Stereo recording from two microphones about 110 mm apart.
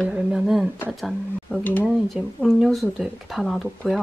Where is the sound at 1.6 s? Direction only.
15° left (ahead or behind).